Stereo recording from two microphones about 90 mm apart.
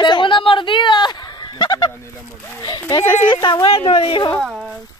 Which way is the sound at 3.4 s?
60° left (ahead or behind).